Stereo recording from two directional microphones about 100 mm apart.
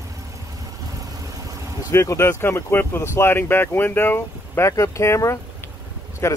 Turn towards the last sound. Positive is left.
turn(degrees=30)  # may be behind; listen again after turning